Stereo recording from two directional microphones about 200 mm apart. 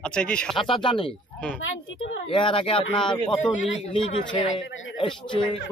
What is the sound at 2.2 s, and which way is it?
Speech, 25° left (ahead or behind).